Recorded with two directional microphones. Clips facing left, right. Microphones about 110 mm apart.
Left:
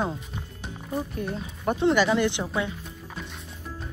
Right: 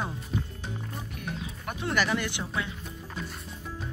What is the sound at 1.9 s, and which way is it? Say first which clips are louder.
Speech: left 2 dB; 20° left (ahead or behind).